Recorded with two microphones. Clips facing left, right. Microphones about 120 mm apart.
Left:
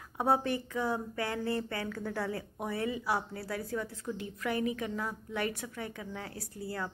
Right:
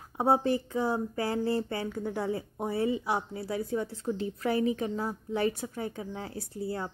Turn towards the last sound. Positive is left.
turn(degrees=-25)  # may be behind; listen again after turning